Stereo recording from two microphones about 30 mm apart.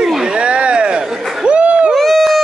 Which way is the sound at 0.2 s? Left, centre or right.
Right.